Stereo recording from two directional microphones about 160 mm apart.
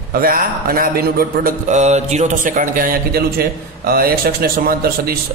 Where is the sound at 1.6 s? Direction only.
45° right (ahead or behind).